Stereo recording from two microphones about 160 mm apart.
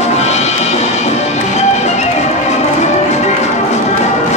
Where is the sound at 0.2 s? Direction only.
45° left (ahead or behind).